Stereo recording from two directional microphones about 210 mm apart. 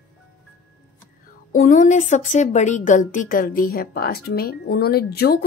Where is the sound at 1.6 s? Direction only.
40° left (ahead or behind).